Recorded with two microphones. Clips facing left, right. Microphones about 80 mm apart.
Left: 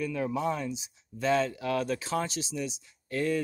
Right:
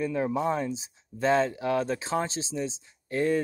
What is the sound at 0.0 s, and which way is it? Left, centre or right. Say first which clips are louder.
Speech: right 3 dB; right.